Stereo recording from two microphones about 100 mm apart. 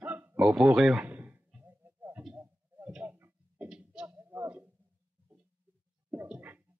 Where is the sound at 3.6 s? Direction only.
10° right (ahead or behind).